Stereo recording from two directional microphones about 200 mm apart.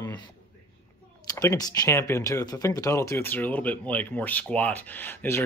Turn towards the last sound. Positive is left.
turn(degrees=10)  # may be behind; listen again after turning